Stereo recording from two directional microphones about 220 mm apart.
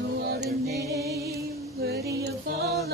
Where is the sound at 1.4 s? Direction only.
45° right (ahead or behind).